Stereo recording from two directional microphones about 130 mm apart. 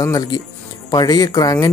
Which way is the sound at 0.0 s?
25° left (ahead or behind).